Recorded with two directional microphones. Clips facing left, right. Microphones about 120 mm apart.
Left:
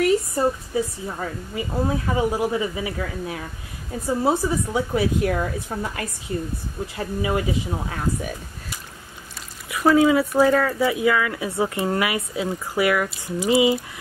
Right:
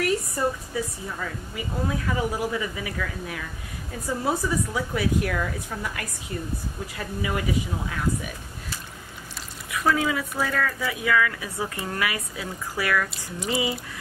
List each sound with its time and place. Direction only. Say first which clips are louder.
0.0 s a woman's voice: left 5 dB; 25° left (ahead or behind)
9.7 s a woman's voice: left 7 dB; 30° left (ahead or behind)